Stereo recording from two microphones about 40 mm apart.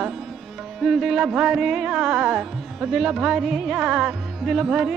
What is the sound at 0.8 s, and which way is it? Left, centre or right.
Music, centre.